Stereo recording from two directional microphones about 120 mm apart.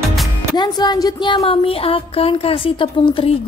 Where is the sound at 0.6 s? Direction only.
35° left (ahead or behind).